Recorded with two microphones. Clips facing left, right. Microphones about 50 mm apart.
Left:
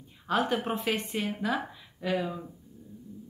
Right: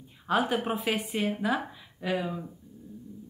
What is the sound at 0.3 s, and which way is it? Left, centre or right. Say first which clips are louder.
Speech: right 1 dB; centre.